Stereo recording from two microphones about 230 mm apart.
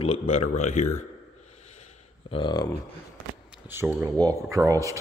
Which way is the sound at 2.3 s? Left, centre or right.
Centre.